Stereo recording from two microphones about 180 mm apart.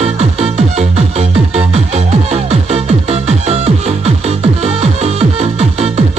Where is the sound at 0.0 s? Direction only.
35° right (ahead or behind).